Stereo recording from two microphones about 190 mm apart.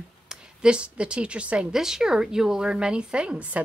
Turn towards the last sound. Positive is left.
turn(degrees=-5)  # may be behind; listen again after turning